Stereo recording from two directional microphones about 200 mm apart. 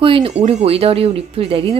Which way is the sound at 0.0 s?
30° right (ahead or behind).